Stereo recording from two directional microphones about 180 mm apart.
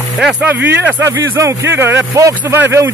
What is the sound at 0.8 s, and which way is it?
Speech, 15° right (ahead or behind).